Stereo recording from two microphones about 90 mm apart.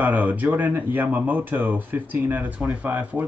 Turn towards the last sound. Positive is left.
turn(degrees=-15)  # may be behind; listen again after turning